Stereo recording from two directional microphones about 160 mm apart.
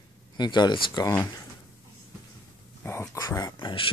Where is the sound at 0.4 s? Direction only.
25° left (ahead or behind).